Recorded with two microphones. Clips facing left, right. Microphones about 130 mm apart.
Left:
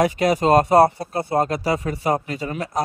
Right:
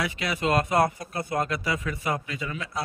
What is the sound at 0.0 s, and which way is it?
Speech, 40° left (ahead or behind).